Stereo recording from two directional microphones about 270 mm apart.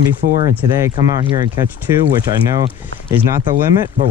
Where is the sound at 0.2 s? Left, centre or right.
Right.